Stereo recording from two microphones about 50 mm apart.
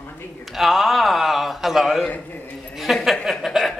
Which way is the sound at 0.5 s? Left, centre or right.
Centre.